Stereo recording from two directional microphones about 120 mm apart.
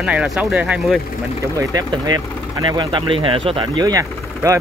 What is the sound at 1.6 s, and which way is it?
Speech, 35° right (ahead or behind).